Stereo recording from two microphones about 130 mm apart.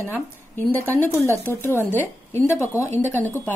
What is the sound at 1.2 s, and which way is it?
Speech, 20° right (ahead or behind).